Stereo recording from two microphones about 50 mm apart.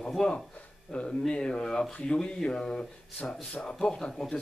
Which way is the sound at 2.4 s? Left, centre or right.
Centre.